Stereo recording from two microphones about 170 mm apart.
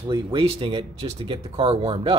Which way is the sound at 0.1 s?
30° right (ahead or behind).